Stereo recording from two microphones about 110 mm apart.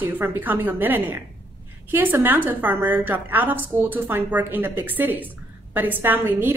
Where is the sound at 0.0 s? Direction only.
20° right (ahead or behind).